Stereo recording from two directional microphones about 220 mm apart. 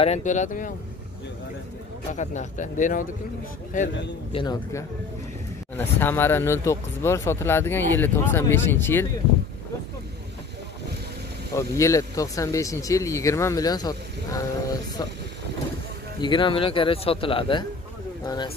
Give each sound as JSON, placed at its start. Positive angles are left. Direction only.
{"t": 0.0, "sound": "speech", "side_deg": 30}
{"t": 2.1, "sound": "speech", "side_deg": 35}
{"t": 4.3, "sound": "speech", "side_deg": 20}
{"t": 5.8, "sound": "speech", "side_deg": 10}
{"t": 11.5, "sound": "speech", "side_deg": 15}
{"t": 16.2, "sound": "speech", "side_deg": 20}